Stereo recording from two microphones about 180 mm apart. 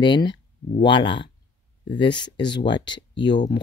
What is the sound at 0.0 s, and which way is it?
Speech, 25° left (ahead or behind).